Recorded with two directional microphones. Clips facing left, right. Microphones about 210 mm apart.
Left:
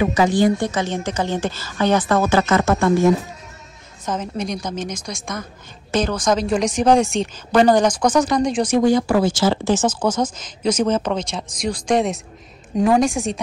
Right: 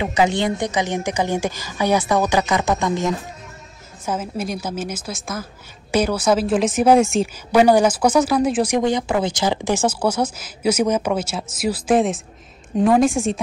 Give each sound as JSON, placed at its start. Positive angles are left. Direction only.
{"t": 0.0, "sound": "a woman's voice", "side_deg": -25}
{"t": 4.0, "sound": "a woman's voice", "side_deg": -5}
{"t": 8.7, "sound": "a woman's voice", "side_deg": -20}